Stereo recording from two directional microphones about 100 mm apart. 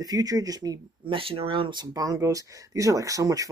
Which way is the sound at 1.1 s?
70° right (ahead or behind).